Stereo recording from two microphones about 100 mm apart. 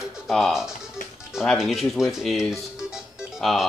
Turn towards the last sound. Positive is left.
turn(degrees=0)  # may be behind; listen again after turning